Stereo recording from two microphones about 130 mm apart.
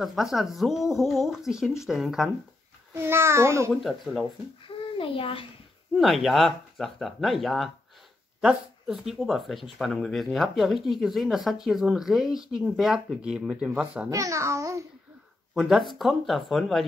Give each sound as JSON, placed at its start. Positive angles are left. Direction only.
{"t": 0.0, "sound": "speech", "side_deg": 0}
{"t": 2.9, "sound": "a child's voice", "side_deg": -20}
{"t": 3.8, "sound": "speech", "side_deg": 0}
{"t": 4.2, "sound": "a child's voice", "side_deg": 40}
{"t": 5.9, "sound": "speech", "side_deg": 0}
{"t": 14.1, "sound": "a child's voice", "side_deg": -25}
{"t": 15.5, "sound": "speech", "side_deg": 0}